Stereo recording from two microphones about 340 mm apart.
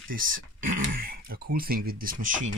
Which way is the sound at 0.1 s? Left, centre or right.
Right.